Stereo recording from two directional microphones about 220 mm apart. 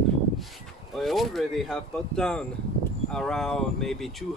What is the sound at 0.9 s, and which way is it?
Speech, centre (ahead or behind).